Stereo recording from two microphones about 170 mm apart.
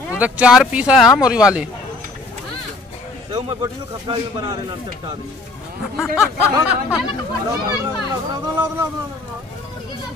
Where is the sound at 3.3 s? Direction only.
25° right (ahead or behind).